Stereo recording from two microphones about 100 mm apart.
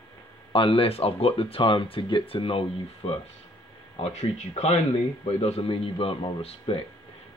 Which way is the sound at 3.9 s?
90° left.